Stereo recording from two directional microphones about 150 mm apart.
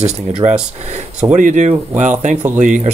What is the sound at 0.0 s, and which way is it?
Speech, 45° right (ahead or behind).